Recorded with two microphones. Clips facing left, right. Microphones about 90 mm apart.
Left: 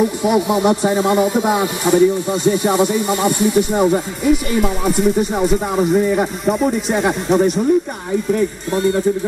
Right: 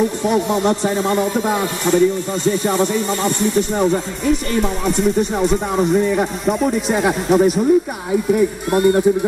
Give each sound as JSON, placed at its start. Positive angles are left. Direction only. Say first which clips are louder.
{"t": 0.0, "sound": "speech", "louder": "left 1 dB", "side_deg": 10}
{"t": 8.6, "sound": "a man's voice", "louder": "right 4 dB", "side_deg": -55}